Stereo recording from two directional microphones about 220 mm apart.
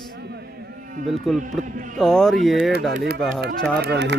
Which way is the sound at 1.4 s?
35° right (ahead or behind).